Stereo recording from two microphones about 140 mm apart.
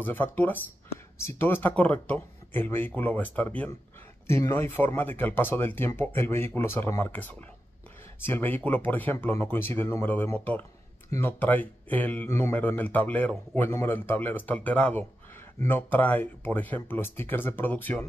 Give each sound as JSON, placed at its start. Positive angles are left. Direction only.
{"t": 0.0, "sound": "speech", "side_deg": 15}